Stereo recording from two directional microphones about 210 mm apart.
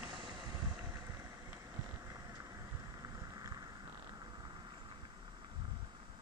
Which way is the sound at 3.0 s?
15° right (ahead or behind).